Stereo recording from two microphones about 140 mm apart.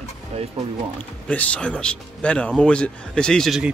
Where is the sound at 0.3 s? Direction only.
45° right (ahead or behind).